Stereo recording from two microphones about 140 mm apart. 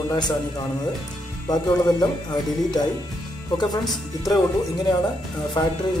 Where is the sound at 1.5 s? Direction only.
30° left (ahead or behind).